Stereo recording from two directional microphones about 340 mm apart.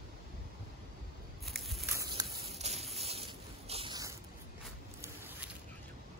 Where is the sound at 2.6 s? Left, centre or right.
Centre.